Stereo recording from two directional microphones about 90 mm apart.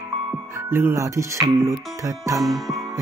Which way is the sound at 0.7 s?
30° right (ahead or behind).